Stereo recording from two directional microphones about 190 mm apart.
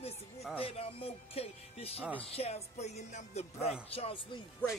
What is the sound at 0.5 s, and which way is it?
Speech, 30° left (ahead or behind).